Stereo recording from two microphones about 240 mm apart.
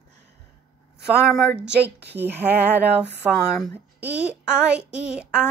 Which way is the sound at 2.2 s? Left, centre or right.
Centre.